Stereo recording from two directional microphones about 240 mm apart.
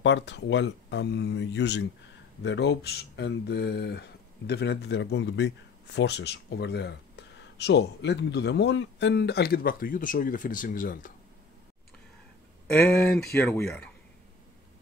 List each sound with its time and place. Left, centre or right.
0.0 s speech: left
12.6 s speech: centre